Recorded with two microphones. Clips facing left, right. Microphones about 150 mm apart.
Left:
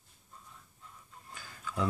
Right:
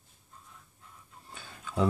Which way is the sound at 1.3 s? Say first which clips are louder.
Right 3 dB; 25° right (ahead or behind).